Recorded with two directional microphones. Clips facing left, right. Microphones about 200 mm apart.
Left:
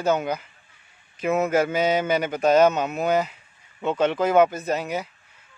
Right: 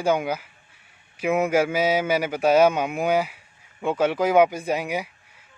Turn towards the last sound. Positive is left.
turn(degrees=-10)  # may be behind; listen again after turning